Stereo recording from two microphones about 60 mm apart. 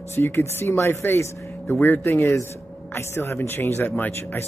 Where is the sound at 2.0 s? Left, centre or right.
Left.